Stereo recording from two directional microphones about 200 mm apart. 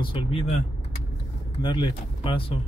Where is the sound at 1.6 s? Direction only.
20° left (ahead or behind).